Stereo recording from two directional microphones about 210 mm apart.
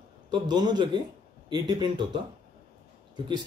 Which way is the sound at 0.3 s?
20° right (ahead or behind).